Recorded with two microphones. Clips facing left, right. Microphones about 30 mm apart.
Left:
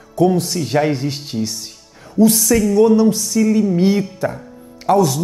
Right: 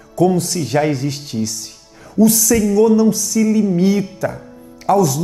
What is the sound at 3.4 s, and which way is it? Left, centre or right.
Music, centre.